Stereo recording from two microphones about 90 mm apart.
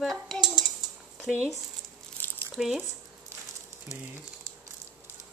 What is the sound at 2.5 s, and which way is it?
Speech, 5° right (ahead or behind).